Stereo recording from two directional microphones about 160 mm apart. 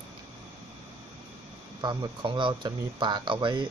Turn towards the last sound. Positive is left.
turn(degrees=-30)  # may be behind; listen again after turning